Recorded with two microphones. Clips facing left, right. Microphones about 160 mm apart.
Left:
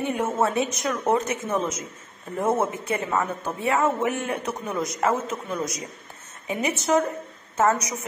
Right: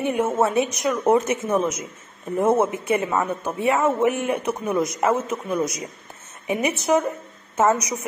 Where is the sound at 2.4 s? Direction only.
25° right (ahead or behind).